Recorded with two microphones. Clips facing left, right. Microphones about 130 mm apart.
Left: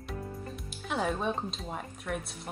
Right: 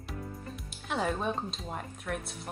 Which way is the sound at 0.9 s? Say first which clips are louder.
Even; centre (ahead or behind).